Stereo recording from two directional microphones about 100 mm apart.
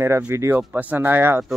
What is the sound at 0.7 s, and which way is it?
Speech, 15° right (ahead or behind).